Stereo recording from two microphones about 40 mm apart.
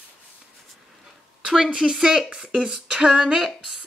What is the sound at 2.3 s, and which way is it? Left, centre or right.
Speech, right.